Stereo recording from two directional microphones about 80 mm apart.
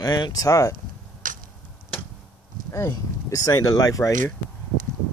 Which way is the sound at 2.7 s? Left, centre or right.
Left.